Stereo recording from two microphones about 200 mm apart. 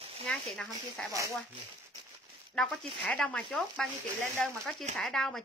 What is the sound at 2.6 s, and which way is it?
Speech, centre (ahead or behind).